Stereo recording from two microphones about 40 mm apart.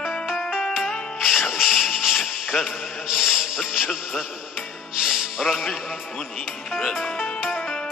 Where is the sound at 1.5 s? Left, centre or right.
Centre.